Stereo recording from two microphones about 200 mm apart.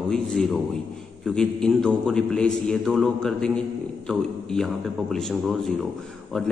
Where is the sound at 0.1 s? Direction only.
Centre (ahead or behind).